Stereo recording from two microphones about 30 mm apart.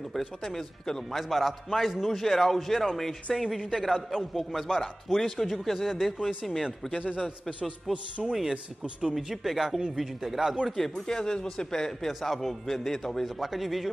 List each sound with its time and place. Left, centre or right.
0.2 s a man's voice: centre
1.1 s a man's voice: centre
7.9 s speech: centre
9.1 s a man's voice: centre
10.8 s a man's voice: centre
12.1 s a man's voice: centre
13.4 s a man's voice: centre